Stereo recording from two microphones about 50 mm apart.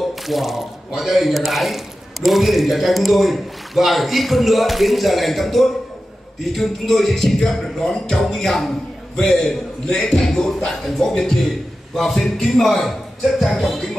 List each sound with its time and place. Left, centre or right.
0.3 s a man's voice: centre